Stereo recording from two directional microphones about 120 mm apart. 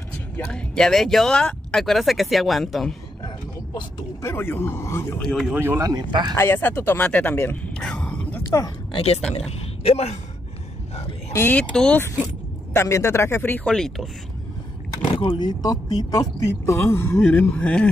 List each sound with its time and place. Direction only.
0.5 s speech: 5° left (ahead or behind)
4.2 s a man's voice: 20° left (ahead or behind)
5.2 s speech: 5° left (ahead or behind)
5.5 s speech: 20° right (ahead or behind); by 6.3 s 35° right (ahead or behind)
6.3 s speech: 20° left (ahead or behind)
7.7 s a sound: 5° left (ahead or behind)
8.5 s speech: 25° left (ahead or behind)
8.9 s speech: 60° left (ahead or behind)
11.3 s speech: 15° left (ahead or behind)
11.7 s speech: 5° left (ahead or behind)
12.7 s a man's voice: 25° left (ahead or behind)
13.7 s speech: 5° left (ahead or behind)
15.1 s speech: 40° left (ahead or behind); by 17.8 s 10° left (ahead or behind)